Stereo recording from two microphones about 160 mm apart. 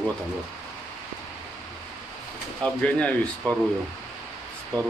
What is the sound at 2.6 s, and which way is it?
Speech, 5° left (ahead or behind).